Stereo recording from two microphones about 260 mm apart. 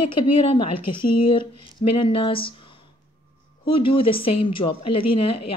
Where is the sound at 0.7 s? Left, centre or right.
Left.